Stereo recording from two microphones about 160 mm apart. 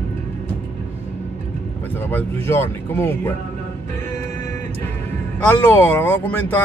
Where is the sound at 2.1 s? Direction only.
10° left (ahead or behind).